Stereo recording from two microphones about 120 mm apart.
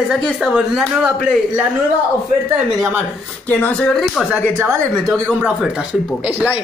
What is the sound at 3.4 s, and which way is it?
Speech, 10° left (ahead or behind).